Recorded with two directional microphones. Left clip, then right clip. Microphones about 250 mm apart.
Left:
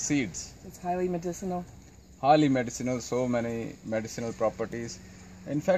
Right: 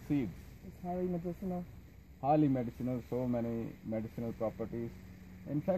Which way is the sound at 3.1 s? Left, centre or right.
Left.